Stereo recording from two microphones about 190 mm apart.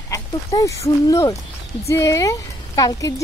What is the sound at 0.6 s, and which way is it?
Speech, 15° left (ahead or behind).